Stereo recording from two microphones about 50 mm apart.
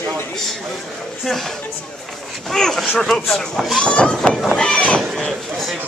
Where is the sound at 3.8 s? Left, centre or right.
Centre.